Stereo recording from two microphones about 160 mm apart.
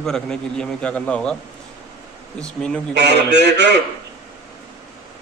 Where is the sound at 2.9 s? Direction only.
90° right.